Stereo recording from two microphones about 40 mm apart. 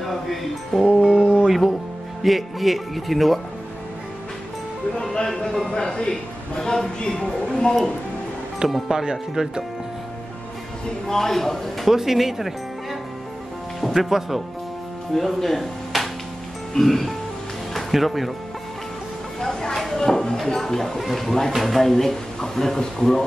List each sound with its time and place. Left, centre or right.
0.0 s speech: centre
0.8 s a sound: right
1.5 s speech: centre
5.0 s speech: centre
8.6 s speech: centre
8.9 s speech: centre
11.1 s speech: centre
11.9 s speech: centre
13.7 s speech: centre
19.4 s speech: centre